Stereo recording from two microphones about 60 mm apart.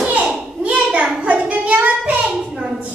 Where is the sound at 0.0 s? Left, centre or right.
Right.